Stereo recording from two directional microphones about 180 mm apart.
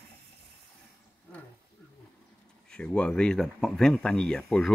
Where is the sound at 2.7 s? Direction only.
5° left (ahead or behind).